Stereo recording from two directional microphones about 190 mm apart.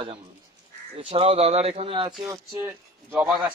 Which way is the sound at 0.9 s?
30° right (ahead or behind).